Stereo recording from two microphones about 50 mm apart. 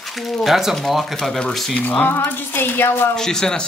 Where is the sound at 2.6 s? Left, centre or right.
Left.